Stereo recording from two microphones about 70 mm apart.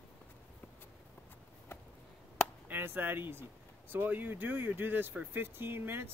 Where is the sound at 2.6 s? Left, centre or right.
Right.